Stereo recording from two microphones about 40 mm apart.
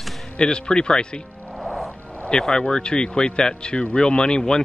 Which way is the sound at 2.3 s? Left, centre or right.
Centre.